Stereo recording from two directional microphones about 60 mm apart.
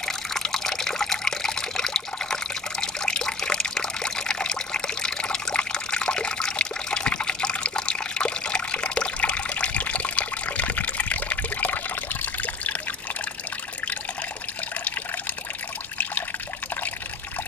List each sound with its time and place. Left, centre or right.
0.0 s water: centre; by 12.7 s left